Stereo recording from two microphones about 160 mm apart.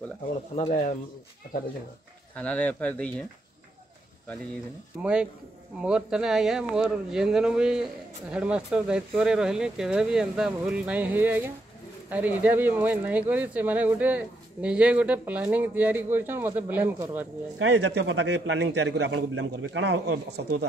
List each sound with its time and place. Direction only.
0.6 s speech: 45° left (ahead or behind)
2.3 s speech: 10° left (ahead or behind)
5.0 s speech: 5° right (ahead or behind)
17.7 s a man's voice: 90° right